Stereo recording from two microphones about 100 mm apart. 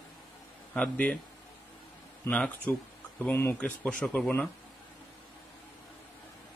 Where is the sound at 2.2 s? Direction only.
15° left (ahead or behind).